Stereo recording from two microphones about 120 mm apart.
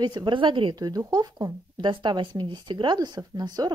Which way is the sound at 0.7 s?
30° right (ahead or behind).